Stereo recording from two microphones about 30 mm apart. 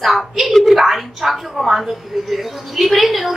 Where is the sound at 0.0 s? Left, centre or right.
Centre.